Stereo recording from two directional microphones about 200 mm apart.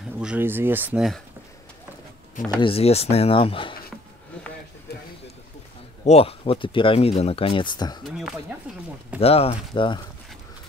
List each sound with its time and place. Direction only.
0.2 s speech: 10° right (ahead or behind)
2.6 s speech: 30° left (ahead or behind)
6.0 s speech: 30° left (ahead or behind)
8.0 s speech: centre (ahead or behind)
9.2 s speech: 30° left (ahead or behind)